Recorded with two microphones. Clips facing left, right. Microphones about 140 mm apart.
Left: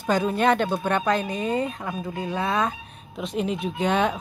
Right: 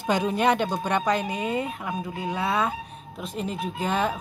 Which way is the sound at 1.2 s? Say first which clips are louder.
Left 2 dB; 45° left (ahead or behind).